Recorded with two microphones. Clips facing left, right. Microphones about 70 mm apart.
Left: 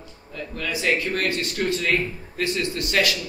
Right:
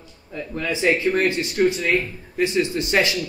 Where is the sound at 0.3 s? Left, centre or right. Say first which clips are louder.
Right 3 dB; right.